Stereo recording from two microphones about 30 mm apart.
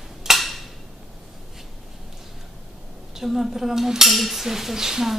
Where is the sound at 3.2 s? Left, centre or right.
Centre.